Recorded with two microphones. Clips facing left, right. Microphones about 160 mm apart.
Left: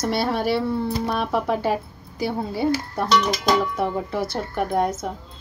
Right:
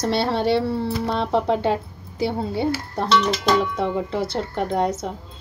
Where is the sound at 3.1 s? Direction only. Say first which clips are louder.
Right 1 dB; 10° left (ahead or behind).